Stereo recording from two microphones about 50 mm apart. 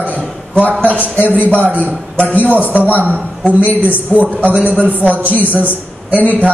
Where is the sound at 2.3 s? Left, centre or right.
Left.